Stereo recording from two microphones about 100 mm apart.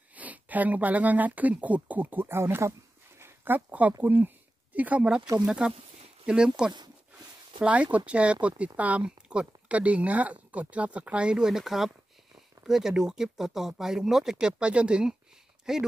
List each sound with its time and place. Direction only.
0.1 s speech: 15° right (ahead or behind)
3.2 s dog: 20° right (ahead or behind)
4.0 s speech: 20° right (ahead or behind)